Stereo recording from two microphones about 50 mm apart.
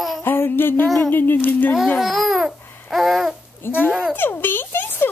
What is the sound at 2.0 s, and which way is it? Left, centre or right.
Babbling, centre.